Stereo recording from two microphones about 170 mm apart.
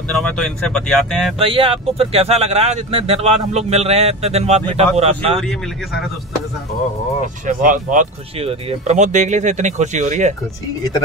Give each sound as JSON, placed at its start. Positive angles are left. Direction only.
{"t": 0.1, "sound": "speech", "side_deg": 5}
{"t": 1.4, "sound": "speech", "side_deg": -35}
{"t": 5.4, "sound": "speech", "side_deg": 5}
{"t": 7.4, "sound": "speech", "side_deg": -50}